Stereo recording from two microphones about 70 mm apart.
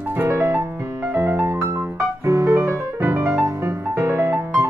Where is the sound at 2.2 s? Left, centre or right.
Right.